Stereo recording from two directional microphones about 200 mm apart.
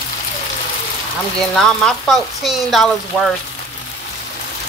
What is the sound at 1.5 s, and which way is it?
Speech, 5° left (ahead or behind).